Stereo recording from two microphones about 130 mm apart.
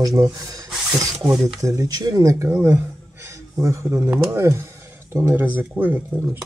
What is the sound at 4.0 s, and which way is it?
Speech, 20° right (ahead or behind).